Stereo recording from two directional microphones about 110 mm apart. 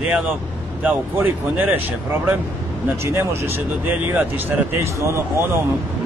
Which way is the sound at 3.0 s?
20° right (ahead or behind).